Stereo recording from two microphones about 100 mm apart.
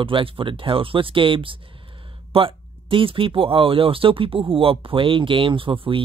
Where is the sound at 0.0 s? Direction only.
60° right (ahead or behind).